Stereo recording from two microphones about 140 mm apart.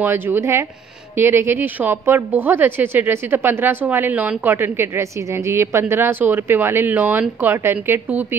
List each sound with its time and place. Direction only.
0.0 s speech: 15° right (ahead or behind)